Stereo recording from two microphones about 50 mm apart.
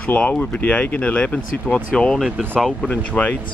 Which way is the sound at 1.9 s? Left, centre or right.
Centre.